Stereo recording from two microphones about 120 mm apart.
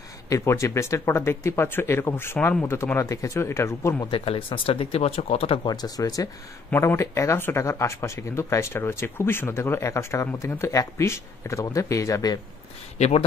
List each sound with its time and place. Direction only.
0.3 s speech: 25° left (ahead or behind)
4.1 s speech: 45° left (ahead or behind)
5.6 s speech: 35° left (ahead or behind)